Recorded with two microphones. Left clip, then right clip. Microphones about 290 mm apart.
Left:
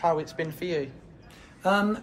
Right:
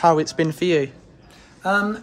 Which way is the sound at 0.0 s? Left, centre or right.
Right.